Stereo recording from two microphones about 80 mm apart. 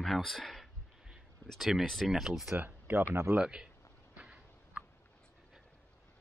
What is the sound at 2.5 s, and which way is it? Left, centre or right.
Speech, right.